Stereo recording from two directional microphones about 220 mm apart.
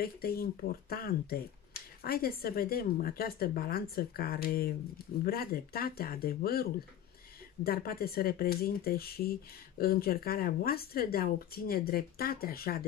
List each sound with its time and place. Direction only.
0.0 s speech: 45° left (ahead or behind)